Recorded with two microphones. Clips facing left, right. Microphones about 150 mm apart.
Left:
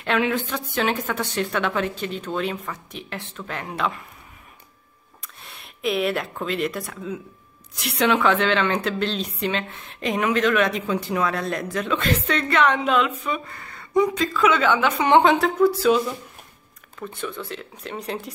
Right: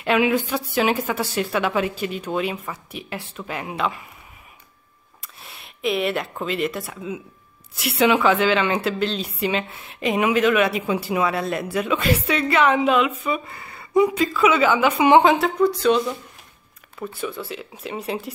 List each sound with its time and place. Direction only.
0.0 s speech: 5° right (ahead or behind)
5.2 s a woman's voice: centre (ahead or behind)